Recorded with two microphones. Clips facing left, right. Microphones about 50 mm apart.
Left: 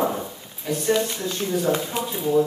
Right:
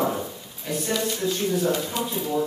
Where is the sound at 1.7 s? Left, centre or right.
Left.